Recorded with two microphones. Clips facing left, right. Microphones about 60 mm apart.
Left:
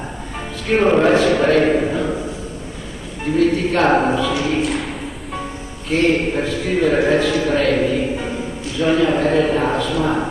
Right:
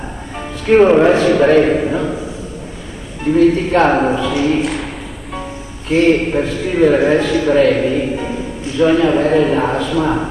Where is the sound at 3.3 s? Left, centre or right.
Centre.